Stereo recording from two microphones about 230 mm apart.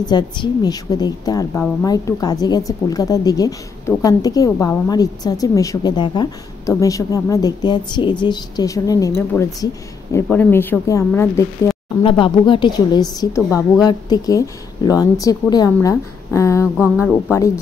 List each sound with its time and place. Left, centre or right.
0.1 s a woman's voice: centre
12.0 s a woman's voice: left
16.6 s music: centre
17.1 s a woman's voice: centre